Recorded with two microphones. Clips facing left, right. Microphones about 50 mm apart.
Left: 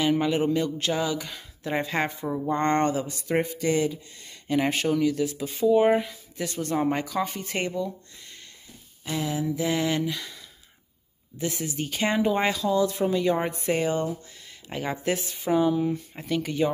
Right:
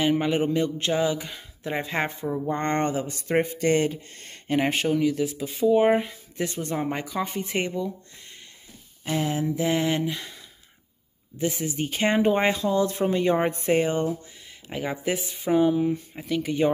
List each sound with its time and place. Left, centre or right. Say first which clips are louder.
0.2 s a man's voice: even; right
2.2 s speech: right 1 dB; centre
2.5 s a man's voice: left 3 dB; right
3.4 s speech: right 2 dB; right
4.5 s a man's voice: right 1 dB; right
6.0 s speech: right 3 dB; right; by 7.9 s centre
9.0 s a man's voice: right 2 dB; right
14.7 s speech: even; centre
16.2 s speech: even; centre